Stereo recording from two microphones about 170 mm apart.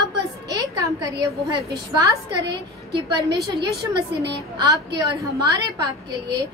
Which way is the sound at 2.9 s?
75° right (ahead or behind).